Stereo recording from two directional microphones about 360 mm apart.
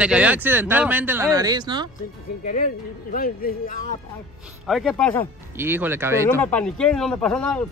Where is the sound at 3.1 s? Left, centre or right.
Left.